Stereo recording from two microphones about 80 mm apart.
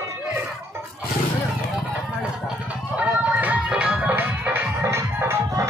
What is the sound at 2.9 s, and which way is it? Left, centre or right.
Music, centre.